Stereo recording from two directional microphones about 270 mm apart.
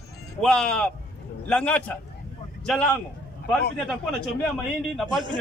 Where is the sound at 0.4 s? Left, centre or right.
Centre.